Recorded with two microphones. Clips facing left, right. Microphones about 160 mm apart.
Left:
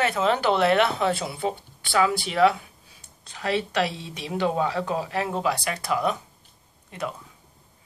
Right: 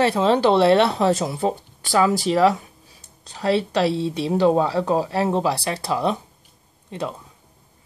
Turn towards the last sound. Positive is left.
turn(degrees=-25)  # may be behind; listen again after turning